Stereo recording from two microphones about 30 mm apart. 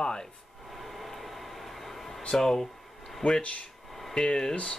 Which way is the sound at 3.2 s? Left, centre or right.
Left.